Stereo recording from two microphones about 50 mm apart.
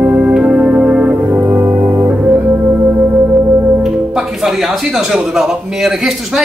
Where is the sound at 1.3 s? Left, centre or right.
Right.